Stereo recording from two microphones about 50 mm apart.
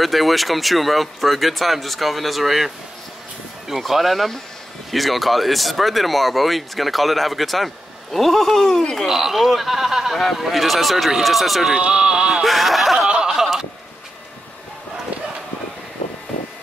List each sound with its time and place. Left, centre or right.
0.0 s speech: centre
9.0 s speech: centre
11.7 s speech: centre
12.4 s speech: centre
13.1 s a sound: centre